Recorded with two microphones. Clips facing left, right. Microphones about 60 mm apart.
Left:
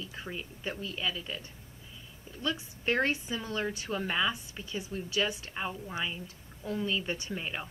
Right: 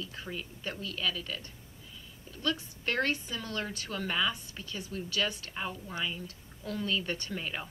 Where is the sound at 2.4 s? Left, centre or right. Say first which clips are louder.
Even; centre.